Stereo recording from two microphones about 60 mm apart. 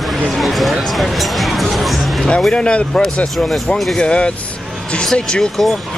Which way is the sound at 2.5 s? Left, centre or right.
Centre.